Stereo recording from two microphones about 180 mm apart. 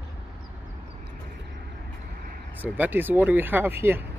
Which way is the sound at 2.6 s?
10° right (ahead or behind).